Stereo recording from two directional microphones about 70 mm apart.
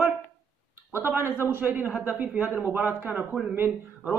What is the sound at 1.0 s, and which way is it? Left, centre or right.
A man's voice, right.